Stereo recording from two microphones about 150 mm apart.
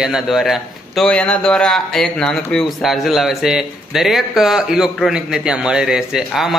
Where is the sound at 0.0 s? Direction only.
Centre (ahead or behind).